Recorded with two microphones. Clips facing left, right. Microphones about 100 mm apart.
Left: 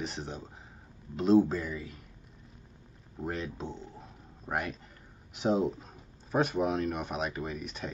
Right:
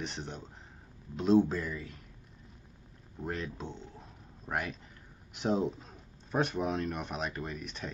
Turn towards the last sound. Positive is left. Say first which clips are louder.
# left 3 dB
turn(degrees=0)  # may be behind; listen again after turning